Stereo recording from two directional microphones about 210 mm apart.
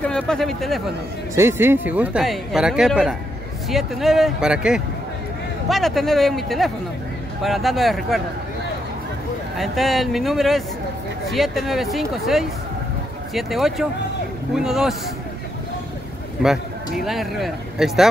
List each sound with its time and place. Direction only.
0.0 s speech: 5° left (ahead or behind)
1.3 s speech: 10° right (ahead or behind)
9.6 s speech: centre (ahead or behind)
16.4 s speech: centre (ahead or behind)